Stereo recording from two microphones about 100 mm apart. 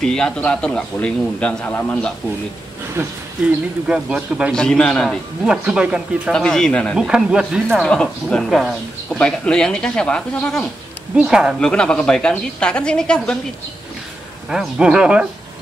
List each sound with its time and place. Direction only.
0.0 s a woman's voice: 10° left (ahead or behind)
3.0 s speech: 25° right (ahead or behind)
3.8 s speech: 5° right (ahead or behind)
4.6 s a woman's voice: 10° left (ahead or behind)
5.5 s speech: 5° right (ahead or behind)
6.3 s a woman's voice: 5° left (ahead or behind)
7.0 s speech: 5° right (ahead or behind)
7.8 s a woman's voice: 10° left (ahead or behind)
9.2 s a woman's voice: 10° left (ahead or behind)
11.1 s speech: 5° right (ahead or behind)
11.6 s a woman's voice: 10° left (ahead or behind)
14.5 s speech: 10° right (ahead or behind)